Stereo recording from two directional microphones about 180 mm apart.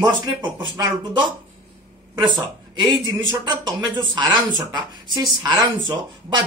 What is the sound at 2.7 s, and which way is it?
Speech, 25° right (ahead or behind).